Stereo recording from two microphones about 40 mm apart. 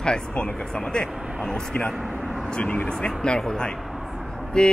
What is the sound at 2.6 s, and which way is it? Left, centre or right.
Speech, left.